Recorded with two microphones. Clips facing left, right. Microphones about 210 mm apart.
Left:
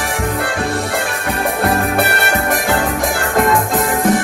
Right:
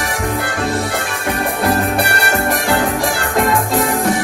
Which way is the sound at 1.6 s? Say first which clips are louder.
Even; centre (ahead or behind).